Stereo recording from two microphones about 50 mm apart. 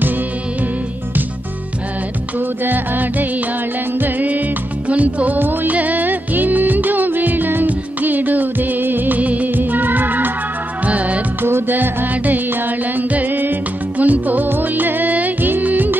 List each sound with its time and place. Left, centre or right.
2.3 s music of bollywood: right
4.0 s music: right
5.4 s music of bollywood: right
10.9 s music: right
11.4 s music: right